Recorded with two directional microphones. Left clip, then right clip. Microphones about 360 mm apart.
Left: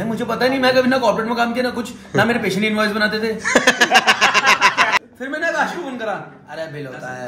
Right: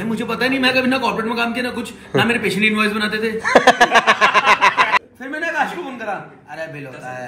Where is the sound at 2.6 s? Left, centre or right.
Left.